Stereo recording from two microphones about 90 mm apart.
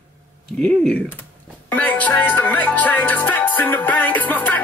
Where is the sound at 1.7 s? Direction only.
20° left (ahead or behind).